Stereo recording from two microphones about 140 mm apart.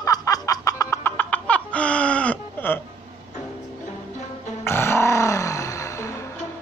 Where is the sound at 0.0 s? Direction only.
25° left (ahead or behind).